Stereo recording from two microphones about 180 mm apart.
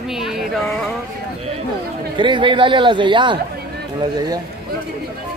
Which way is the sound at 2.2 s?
25° right (ahead or behind).